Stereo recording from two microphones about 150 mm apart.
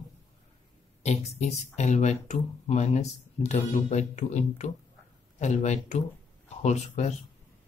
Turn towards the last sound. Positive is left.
turn(degrees=50)  # may be behind; listen again after turning